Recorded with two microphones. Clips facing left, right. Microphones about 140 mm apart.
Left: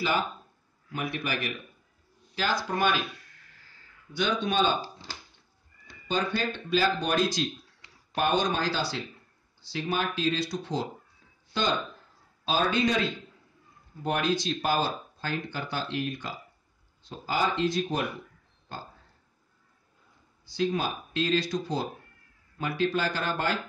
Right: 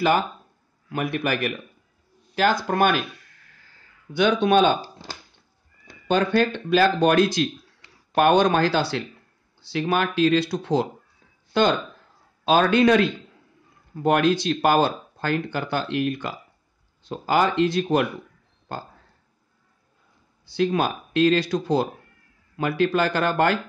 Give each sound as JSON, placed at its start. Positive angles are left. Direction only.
{"t": 0.8, "sound": "speech", "side_deg": -55}
{"t": 4.1, "sound": "speech", "side_deg": -60}
{"t": 6.0, "sound": "speech", "side_deg": -65}
{"t": 20.4, "sound": "speech", "side_deg": -60}